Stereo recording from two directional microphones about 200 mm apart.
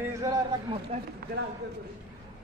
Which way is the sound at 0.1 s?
15° right (ahead or behind).